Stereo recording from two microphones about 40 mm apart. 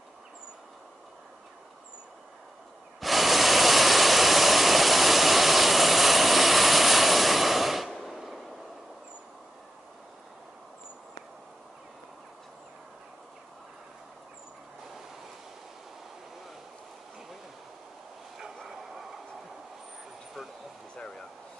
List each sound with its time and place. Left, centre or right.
3.0 s vehicle: centre
18.6 s bow-wow: centre
21.0 s a sound: centre